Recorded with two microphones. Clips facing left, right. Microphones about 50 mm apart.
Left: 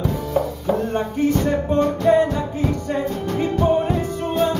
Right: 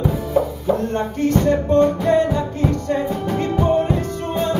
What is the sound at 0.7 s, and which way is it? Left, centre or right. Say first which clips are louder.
Speech: right 1 dB; centre.